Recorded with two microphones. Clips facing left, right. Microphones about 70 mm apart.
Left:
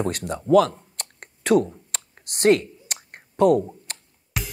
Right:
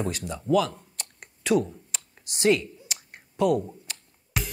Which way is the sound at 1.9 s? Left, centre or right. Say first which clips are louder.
Left 3 dB; left.